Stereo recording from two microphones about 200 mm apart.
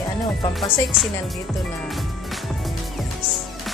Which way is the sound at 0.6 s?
Centre (ahead or behind).